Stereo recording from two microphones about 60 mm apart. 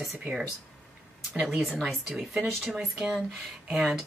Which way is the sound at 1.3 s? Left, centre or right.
Centre.